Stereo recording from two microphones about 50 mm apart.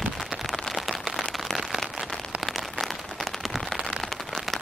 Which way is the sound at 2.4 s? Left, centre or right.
Centre.